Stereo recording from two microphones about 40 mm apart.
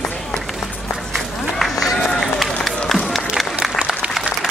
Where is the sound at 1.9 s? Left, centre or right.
Centre.